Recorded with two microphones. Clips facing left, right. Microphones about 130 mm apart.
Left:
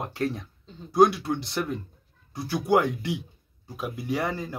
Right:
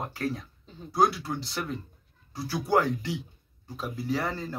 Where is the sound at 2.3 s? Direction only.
15° left (ahead or behind).